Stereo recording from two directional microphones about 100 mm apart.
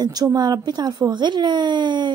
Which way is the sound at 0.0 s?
45° right (ahead or behind).